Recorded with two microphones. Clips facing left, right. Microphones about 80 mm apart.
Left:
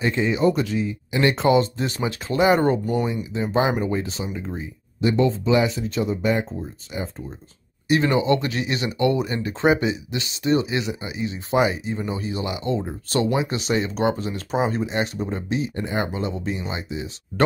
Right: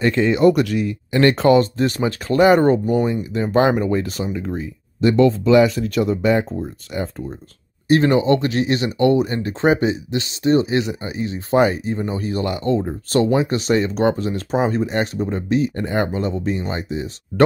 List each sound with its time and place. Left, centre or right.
0.0 s speech: right
3.5 s speech: right
4.6 s speech: right
6.9 s speech: right
7.9 s speech: right